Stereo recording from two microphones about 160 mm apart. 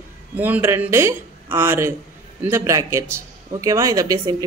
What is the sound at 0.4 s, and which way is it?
A woman's voice, 15° right (ahead or behind).